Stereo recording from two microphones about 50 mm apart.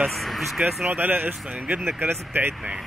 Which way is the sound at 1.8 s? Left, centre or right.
Right.